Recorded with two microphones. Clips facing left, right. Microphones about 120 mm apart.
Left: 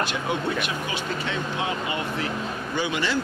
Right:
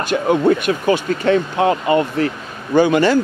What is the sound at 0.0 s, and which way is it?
Speech, 50° right (ahead or behind).